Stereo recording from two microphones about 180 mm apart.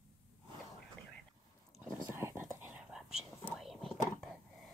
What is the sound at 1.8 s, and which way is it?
Whispering, 15° right (ahead or behind).